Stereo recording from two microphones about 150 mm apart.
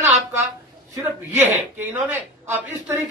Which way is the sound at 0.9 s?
15° right (ahead or behind).